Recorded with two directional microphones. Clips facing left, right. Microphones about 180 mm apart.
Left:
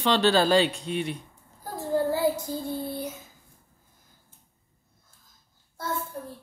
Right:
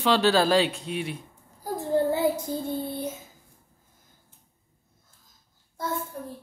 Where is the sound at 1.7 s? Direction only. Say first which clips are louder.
Right 1 dB; 20° right (ahead or behind).